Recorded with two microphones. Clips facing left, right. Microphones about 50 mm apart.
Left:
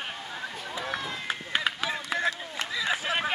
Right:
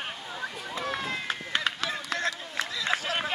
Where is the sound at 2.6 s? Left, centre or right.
Centre.